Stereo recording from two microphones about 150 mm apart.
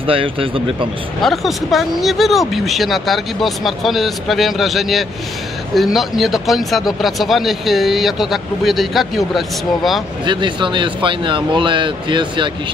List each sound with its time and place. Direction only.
0.0 s speech: 35° right (ahead or behind)
1.2 s speech: centre (ahead or behind)
10.2 s speech: 30° right (ahead or behind)